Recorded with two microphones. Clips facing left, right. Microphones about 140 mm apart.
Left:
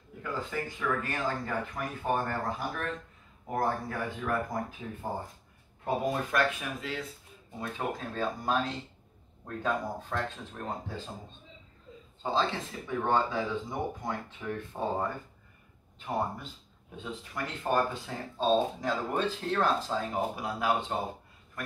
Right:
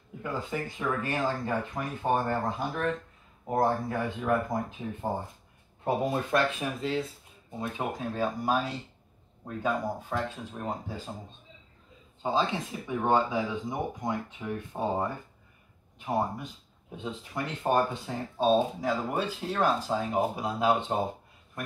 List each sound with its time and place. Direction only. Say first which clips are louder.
0.2 s speech: right 2 dB; 20° right (ahead or behind)
6.3 s speech: right 2 dB; 25° right (ahead or behind)
7.6 s speech: right 2 dB; 15° right (ahead or behind)
12.2 s speech: right 2 dB; 15° right (ahead or behind)